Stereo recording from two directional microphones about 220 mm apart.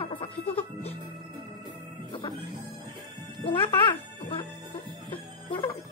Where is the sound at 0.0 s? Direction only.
25° left (ahead or behind).